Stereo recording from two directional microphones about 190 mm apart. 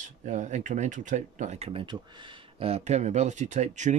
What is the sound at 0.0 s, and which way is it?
Speech, 40° right (ahead or behind).